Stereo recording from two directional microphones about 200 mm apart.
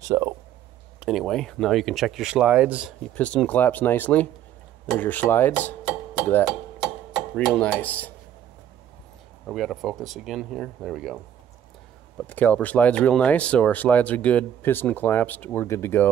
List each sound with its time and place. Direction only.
0.0 s speech: 15° right (ahead or behind)
0.9 s speech: centre (ahead or behind)
3.2 s speech: 5° left (ahead or behind)
4.9 s dishes: 10° left (ahead or behind)
6.8 s a sound: centre (ahead or behind)
9.5 s speech: centre (ahead or behind)
12.2 s speech: 10° left (ahead or behind)